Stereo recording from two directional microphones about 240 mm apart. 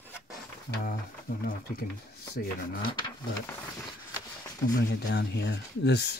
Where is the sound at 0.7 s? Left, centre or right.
Left.